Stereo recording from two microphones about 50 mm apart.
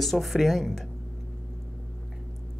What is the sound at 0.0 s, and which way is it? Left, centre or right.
Speech, centre.